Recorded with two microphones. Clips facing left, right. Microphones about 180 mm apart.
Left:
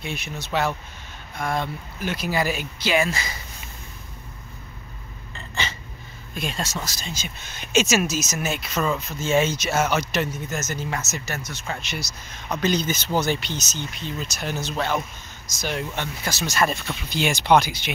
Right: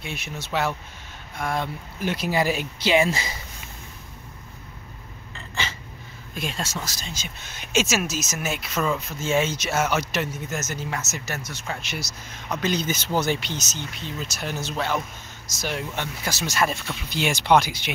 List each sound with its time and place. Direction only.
0.0 s speech: 5° right (ahead or behind)
2.0 s speech: 30° right (ahead or behind)
6.3 s speech: 5° right (ahead or behind)